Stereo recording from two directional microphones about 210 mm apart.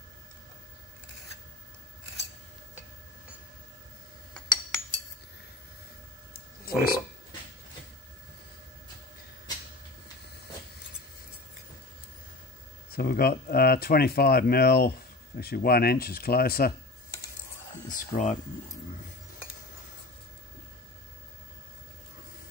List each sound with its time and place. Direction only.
4.3 s cutlery: 5° left (ahead or behind)
6.6 s a sound: 45° left (ahead or behind)
12.9 s speech: 45° left (ahead or behind)
17.8 s speech: 40° left (ahead or behind)